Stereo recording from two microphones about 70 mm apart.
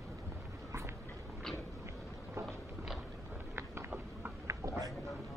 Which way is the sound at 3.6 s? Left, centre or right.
Right.